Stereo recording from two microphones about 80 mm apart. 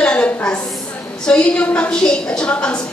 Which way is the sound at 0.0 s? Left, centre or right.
Centre.